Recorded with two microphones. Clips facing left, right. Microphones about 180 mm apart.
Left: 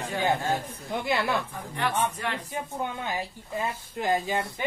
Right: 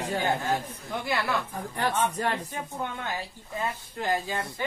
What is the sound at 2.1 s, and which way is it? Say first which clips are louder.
Speech: right 4 dB; 40° right (ahead or behind).